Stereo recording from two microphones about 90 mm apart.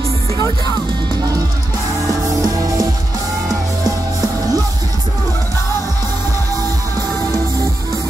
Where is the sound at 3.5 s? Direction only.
45° right (ahead or behind).